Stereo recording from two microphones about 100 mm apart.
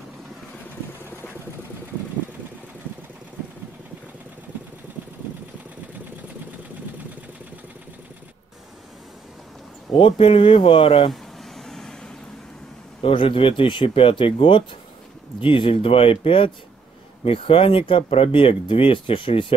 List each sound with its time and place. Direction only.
9.9 s speech: 65° left (ahead or behind)
11.5 s vehicle: 5° left (ahead or behind)
13.0 s speech: 60° left (ahead or behind)